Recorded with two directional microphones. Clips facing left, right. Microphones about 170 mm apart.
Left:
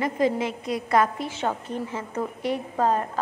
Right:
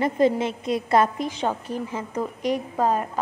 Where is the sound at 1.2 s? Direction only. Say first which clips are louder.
Right 2 dB; 15° right (ahead or behind).